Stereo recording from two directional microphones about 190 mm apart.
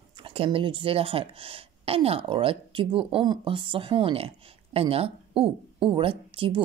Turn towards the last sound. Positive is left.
turn(degrees=-30)  # may be behind; listen again after turning